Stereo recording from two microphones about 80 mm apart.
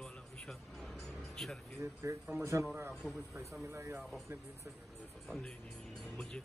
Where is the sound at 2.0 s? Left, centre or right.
Right.